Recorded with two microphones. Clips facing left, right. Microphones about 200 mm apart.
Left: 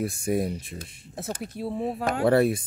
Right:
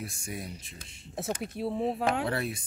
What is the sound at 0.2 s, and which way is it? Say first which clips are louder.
Speech: left 13 dB; 55° left (ahead or behind).